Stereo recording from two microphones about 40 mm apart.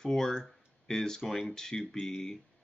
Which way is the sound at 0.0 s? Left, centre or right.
Centre.